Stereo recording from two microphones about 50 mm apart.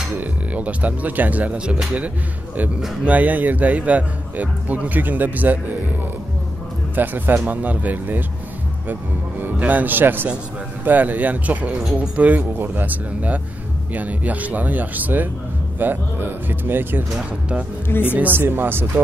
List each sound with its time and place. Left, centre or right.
0.1 s speech: right
3.1 s speech: right
7.0 s speech: right
9.7 s speech: right
11.8 s speech: centre
12.2 s speech: right
17.8 s speech: left
18.1 s speech: right
18.4 s speech: right